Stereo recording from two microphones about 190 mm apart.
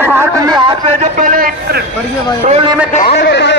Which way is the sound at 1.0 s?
45° right (ahead or behind).